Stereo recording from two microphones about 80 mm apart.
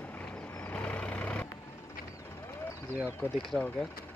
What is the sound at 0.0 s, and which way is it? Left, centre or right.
Vehicle, centre.